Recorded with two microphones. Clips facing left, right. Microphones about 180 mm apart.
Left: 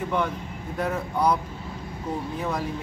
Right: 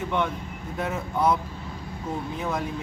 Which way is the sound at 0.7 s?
Centre (ahead or behind).